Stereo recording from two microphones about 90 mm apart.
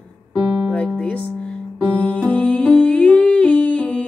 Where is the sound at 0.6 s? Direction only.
15° left (ahead or behind).